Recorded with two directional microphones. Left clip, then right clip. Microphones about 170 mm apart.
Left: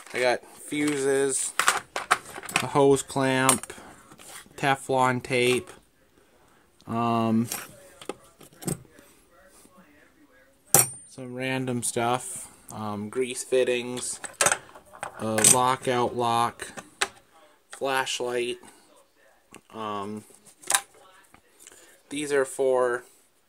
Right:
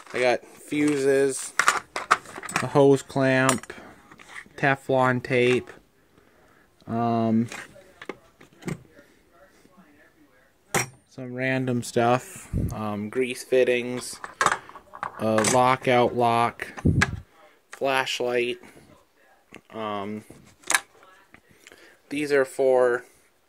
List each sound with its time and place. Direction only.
0.1 s speech: 10° right (ahead or behind)
1.7 s a sound: 10° right (ahead or behind)
4.6 s speech: 5° right (ahead or behind)
6.8 s speech: centre (ahead or behind)
11.3 s speech: 10° right (ahead or behind)
12.7 s speech: 5° right (ahead or behind)
14.2 s dishes: 25° left (ahead or behind)
15.1 s speech: centre (ahead or behind)
17.7 s speech: centre (ahead or behind)
21.6 s speech: 5° right (ahead or behind)